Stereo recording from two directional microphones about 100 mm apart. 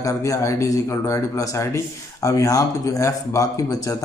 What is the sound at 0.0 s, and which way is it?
Speech, 35° left (ahead or behind).